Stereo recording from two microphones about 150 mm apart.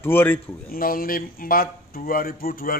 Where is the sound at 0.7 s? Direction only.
75° left (ahead or behind).